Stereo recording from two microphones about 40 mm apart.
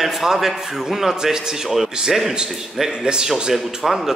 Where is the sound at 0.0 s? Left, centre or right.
Centre.